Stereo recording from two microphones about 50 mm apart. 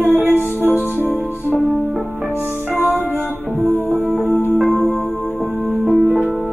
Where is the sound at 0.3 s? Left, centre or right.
Left.